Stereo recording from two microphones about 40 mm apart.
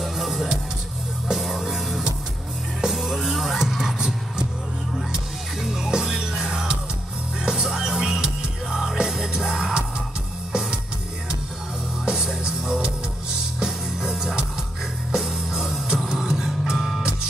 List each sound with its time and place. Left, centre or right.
0.0 s music: centre
5.6 s music: centre
12.0 s music: centre